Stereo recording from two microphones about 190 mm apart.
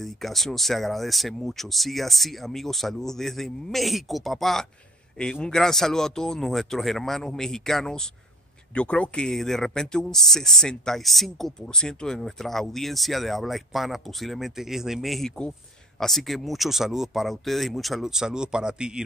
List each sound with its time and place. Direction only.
0.0 s speech: centre (ahead or behind)